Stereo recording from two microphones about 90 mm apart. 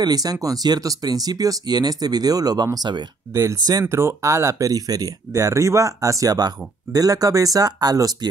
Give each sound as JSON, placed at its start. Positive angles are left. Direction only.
{"t": 0.0, "sound": "speech", "side_deg": -45}
{"t": 3.8, "sound": "speech", "side_deg": -30}